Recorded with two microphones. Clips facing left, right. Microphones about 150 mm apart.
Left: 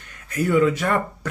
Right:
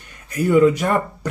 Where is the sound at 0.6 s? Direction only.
20° right (ahead or behind).